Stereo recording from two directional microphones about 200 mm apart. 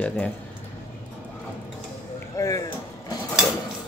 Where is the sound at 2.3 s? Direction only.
15° left (ahead or behind).